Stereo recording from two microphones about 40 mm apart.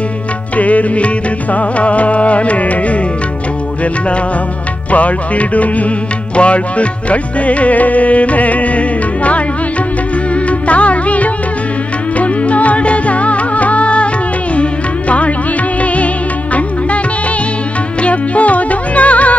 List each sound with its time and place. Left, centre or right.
0.6 s music: left
4.9 s music: left
10.7 s music: left
18.0 s music: left